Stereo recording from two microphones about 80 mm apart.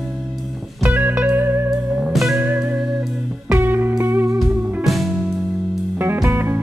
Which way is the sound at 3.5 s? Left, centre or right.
Right.